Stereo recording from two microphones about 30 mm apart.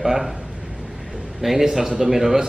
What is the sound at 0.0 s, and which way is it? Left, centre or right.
Speech, centre.